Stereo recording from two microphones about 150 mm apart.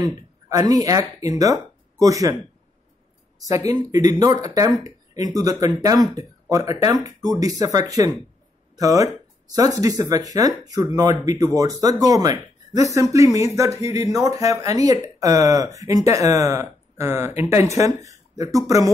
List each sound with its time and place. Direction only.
0.0 s speech: 25° right (ahead or behind)
3.4 s speech: 25° right (ahead or behind)
8.7 s a sound: 25° right (ahead or behind)
9.8 s speech: 25° right (ahead or behind)